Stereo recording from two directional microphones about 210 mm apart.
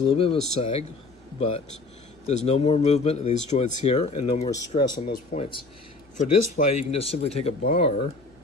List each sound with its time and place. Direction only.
0.1 s speech: 25° left (ahead or behind)
2.2 s speech: 30° left (ahead or behind)
4.5 s speech: 20° left (ahead or behind)